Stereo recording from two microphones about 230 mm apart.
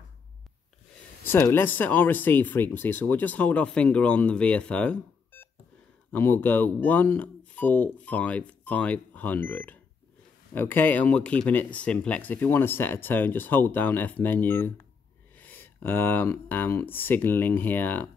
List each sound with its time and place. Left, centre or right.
1.2 s speech: centre